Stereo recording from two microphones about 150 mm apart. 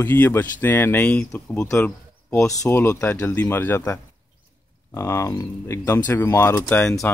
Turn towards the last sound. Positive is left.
turn(degrees=15)  # may be behind; listen again after turning